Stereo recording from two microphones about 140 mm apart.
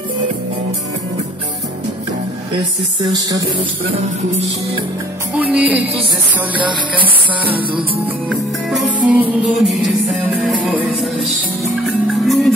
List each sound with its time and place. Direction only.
3.0 s music: 30° right (ahead or behind)
5.3 s music: 10° right (ahead or behind)
7.5 s music: 35° right (ahead or behind)
8.3 s music: 5° right (ahead or behind)